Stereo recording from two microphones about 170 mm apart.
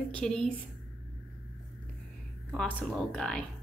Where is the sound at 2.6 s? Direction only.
5° left (ahead or behind).